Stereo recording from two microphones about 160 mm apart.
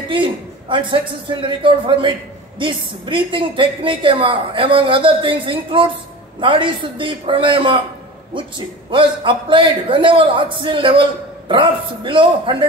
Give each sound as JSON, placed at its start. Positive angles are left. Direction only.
{"t": 0.1, "sound": "a man's voice", "side_deg": -30}